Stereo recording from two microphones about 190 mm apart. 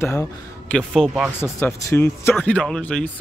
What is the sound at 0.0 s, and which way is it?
Speech, 15° left (ahead or behind).